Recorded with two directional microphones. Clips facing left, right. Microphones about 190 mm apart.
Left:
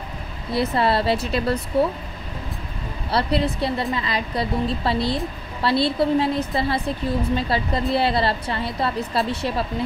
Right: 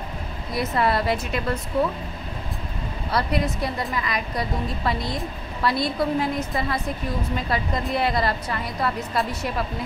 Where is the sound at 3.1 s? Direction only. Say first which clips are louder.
Left 3 dB; 30° left (ahead or behind).